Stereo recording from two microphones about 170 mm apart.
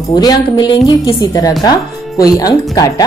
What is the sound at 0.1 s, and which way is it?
A woman's voice, 25° left (ahead or behind).